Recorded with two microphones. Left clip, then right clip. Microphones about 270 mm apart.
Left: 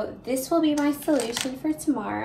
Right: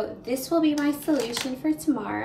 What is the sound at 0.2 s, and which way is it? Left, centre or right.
A woman's voice, centre.